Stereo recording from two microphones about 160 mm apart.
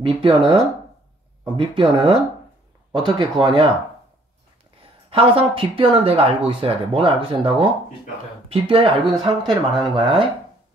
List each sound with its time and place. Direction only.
0.0 s speech: 35° right (ahead or behind)
5.1 s speech: 35° right (ahead or behind)
9.4 s speech: centre (ahead or behind)
9.9 s speech: 30° right (ahead or behind)